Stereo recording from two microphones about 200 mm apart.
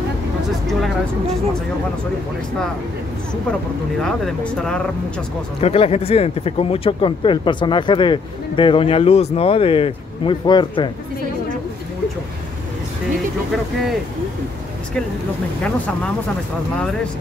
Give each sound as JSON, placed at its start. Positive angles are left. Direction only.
{"t": 0.7, "sound": "speech", "side_deg": 0}
{"t": 4.0, "sound": "speech", "side_deg": 5}
{"t": 5.6, "sound": "speech", "side_deg": 30}